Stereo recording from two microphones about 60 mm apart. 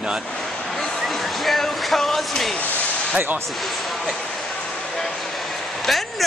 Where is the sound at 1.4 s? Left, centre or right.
Centre.